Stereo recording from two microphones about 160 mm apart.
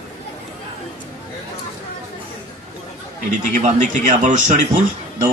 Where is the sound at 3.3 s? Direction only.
50° right (ahead or behind).